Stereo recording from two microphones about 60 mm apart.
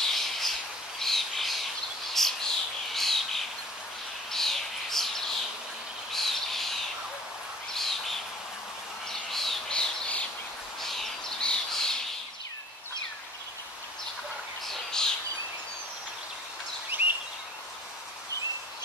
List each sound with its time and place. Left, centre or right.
0.0 s squawk: centre
2.2 s bird: centre
9.3 s bird: centre
9.7 s squawk: centre
10.8 s bird: centre
14.7 s bird: centre
16.9 s a sound: right